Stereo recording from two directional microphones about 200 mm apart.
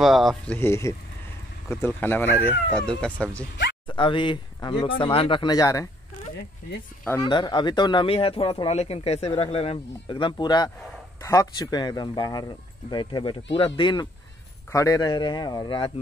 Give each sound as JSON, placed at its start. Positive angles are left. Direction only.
{"t": 0.0, "sound": "speech", "side_deg": 0}
{"t": 0.6, "sound": "speech", "side_deg": 15}
{"t": 3.8, "sound": "speech", "side_deg": 25}
{"t": 7.2, "sound": "speech", "side_deg": 25}